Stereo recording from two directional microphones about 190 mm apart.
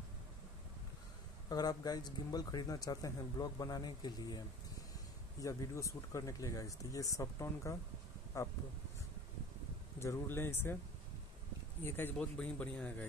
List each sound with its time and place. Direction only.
1.5 s speech: 20° left (ahead or behind)
5.4 s speech: 15° left (ahead or behind)
9.9 s speech: 15° left (ahead or behind)
11.8 s speech: 10° left (ahead or behind)